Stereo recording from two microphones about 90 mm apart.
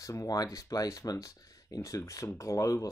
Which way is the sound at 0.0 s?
40° left (ahead or behind).